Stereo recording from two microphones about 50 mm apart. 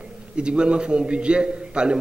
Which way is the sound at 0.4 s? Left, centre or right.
Right.